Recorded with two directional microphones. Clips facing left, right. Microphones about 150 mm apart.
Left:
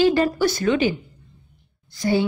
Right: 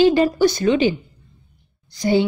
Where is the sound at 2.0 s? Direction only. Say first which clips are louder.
Right 3 dB; 20° right (ahead or behind).